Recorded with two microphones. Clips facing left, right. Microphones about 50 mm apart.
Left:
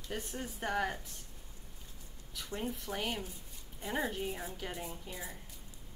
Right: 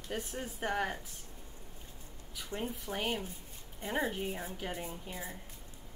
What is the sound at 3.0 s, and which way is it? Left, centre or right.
A woman's voice, centre.